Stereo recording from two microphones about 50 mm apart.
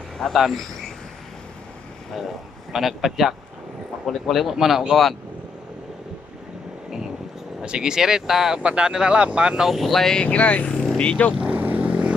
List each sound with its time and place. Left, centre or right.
0.3 s speech: centre
2.1 s speech: centre
7.6 s speech: centre
8.6 s speech: right
9.7 s speech: centre
10.2 s speech: left
11.5 s vehicle: right